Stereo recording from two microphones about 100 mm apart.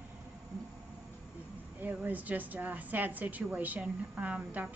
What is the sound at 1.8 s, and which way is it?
A woman's voice, 15° right (ahead or behind).